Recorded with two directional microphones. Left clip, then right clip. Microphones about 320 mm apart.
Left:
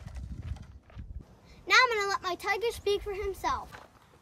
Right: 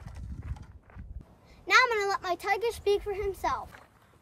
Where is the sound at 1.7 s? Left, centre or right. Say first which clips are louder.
Right 1 dB; centre.